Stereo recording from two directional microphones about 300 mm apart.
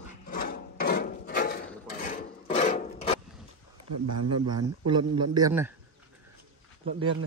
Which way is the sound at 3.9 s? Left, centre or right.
Right.